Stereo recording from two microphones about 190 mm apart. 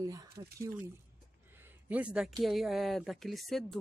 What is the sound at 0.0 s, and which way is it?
Speech, 15° right (ahead or behind).